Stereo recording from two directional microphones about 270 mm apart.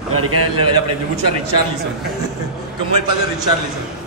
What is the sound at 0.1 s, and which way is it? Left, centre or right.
Speech, right.